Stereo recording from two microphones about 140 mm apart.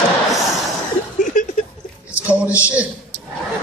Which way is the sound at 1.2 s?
70° left (ahead or behind).